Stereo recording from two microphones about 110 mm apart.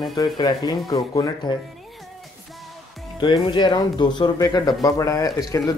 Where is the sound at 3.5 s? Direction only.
45° left (ahead or behind).